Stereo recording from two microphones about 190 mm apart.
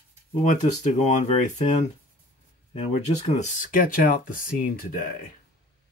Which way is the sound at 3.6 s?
45° left (ahead or behind).